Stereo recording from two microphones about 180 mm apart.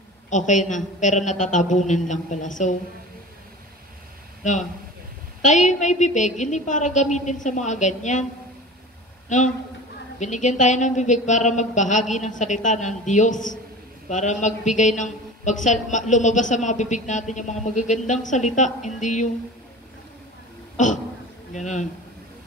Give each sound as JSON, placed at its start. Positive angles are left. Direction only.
{"t": 0.3, "sound": "a man's voice", "side_deg": 45}
{"t": 4.4, "sound": "a man's voice", "side_deg": 40}
{"t": 10.1, "sound": "a man's voice", "side_deg": 40}
{"t": 20.7, "sound": "speech", "side_deg": 45}